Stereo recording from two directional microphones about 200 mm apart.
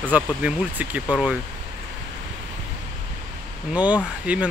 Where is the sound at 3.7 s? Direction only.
5° right (ahead or behind).